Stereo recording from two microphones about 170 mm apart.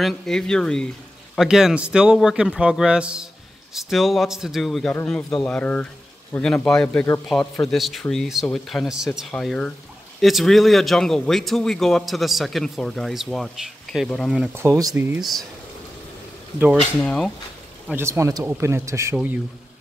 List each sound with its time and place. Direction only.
0.0 s speech: 5° left (ahead or behind); by 15.2 s 15° right (ahead or behind)
17.0 s speech: 5° left (ahead or behind)
17.9 s speech: 15° right (ahead or behind)